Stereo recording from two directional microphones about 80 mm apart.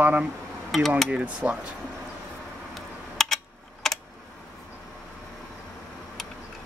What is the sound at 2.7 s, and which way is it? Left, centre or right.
Typing, centre.